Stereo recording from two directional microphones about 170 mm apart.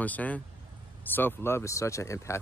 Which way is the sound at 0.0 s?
10° left (ahead or behind).